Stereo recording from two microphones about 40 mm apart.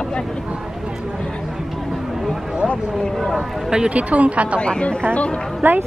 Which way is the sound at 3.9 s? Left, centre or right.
Right.